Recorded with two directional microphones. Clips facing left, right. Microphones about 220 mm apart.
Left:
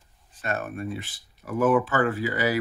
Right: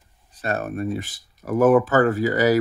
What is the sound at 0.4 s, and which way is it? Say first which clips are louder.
Speech: right 5 dB; 35° right (ahead or behind).